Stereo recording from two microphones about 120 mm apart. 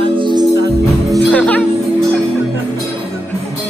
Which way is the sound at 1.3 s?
10° left (ahead or behind).